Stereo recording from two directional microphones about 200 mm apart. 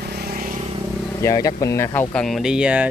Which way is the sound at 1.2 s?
15° left (ahead or behind).